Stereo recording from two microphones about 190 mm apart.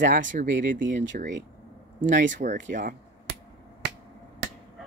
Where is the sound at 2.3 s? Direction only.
40° right (ahead or behind).